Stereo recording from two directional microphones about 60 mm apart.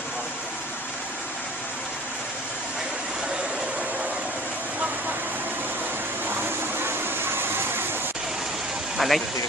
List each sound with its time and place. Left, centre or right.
6.2 s vehicle: right
8.9 s vehicle: centre